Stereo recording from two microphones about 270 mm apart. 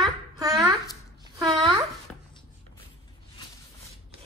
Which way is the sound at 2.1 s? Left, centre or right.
Centre.